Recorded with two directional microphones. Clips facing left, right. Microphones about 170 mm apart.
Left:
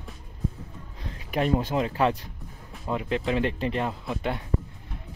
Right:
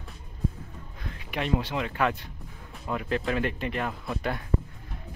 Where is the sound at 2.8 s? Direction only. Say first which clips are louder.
Left 2 dB; 20° left (ahead or behind).